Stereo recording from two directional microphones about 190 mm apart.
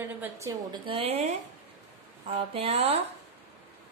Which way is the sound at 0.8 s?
30° right (ahead or behind).